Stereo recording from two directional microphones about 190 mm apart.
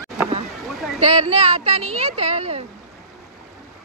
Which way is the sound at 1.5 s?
35° right (ahead or behind).